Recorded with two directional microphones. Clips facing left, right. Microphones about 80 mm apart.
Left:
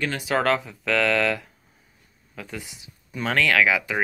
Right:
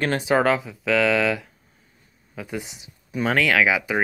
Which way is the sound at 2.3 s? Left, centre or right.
Centre.